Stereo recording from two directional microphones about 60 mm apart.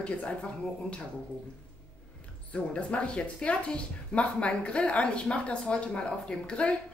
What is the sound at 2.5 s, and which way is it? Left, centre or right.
Speech, left.